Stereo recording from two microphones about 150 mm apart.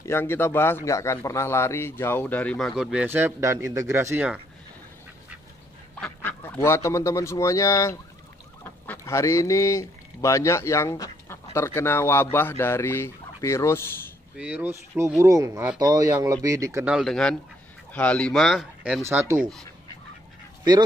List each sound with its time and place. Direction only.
0.0 s speech: 15° left (ahead or behind); by 4.4 s 15° right (ahead or behind)
5.9 s a man's voice: 10° left (ahead or behind)
14.4 s speech: 10° right (ahead or behind)
16.8 s speech: centre (ahead or behind)
19.0 s speech: 15° right (ahead or behind)